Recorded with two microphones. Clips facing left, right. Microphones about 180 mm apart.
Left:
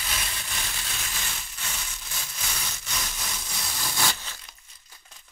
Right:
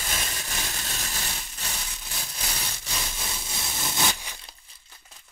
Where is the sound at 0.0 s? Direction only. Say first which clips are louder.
Right 2 dB; 40° right (ahead or behind).